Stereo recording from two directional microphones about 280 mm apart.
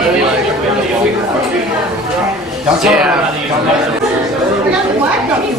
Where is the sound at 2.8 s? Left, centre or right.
Centre.